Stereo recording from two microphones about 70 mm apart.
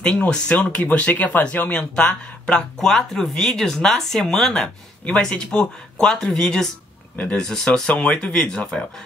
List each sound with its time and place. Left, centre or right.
0.0 s speech: centre